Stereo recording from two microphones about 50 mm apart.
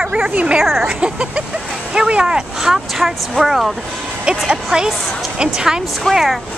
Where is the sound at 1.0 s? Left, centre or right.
Right; by 3.7 s centre.